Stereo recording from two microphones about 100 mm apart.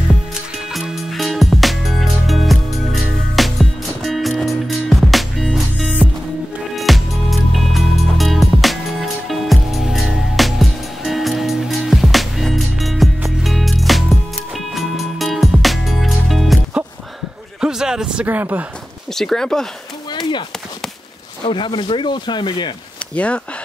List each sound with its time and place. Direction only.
0.7 s music: centre (ahead or behind)
17.6 s a sound: 5° right (ahead or behind)
18.2 s speech: 20° right (ahead or behind)
19.1 s speech: 5° left (ahead or behind)
20.1 s a sound: 50° left (ahead or behind)
21.5 s speech: 55° left (ahead or behind)
23.1 s speech: 15° left (ahead or behind)